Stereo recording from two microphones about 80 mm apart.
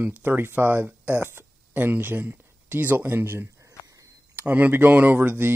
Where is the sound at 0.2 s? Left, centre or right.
Right.